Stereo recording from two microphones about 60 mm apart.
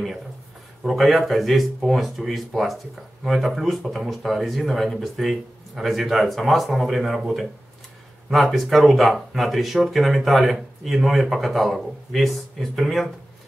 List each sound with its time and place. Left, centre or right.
0.8 s speech: centre